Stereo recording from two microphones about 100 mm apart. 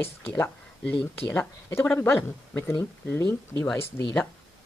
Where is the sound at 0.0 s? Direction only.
20° left (ahead or behind).